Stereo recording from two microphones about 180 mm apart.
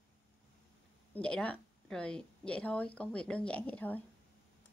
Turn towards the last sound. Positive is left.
turn(degrees=10)  # may be behind; listen again after turning